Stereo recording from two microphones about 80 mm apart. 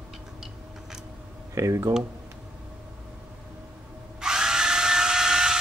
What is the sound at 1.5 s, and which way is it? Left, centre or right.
Speech, right.